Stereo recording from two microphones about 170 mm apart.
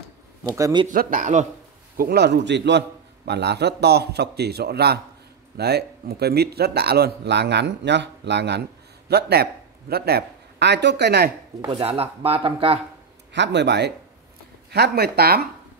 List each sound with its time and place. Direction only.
0.4 s speech: 20° right (ahead or behind)
0.8 s a man's voice: 50° right (ahead or behind)
2.0 s a man's voice: 70° right (ahead or behind); by 2.8 s 90° right
3.3 s a man's voice: 80° right
9.1 s a man's voice: 70° right (ahead or behind)
11.7 s speech: 35° right (ahead or behind)
13.3 s a man's voice: 90° right
14.7 s a man's voice: 70° right (ahead or behind)